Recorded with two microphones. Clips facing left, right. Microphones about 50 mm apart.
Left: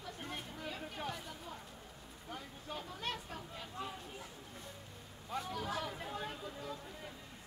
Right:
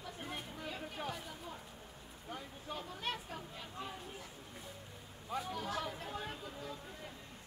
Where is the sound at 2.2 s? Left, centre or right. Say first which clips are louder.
Right 1 dB; centre.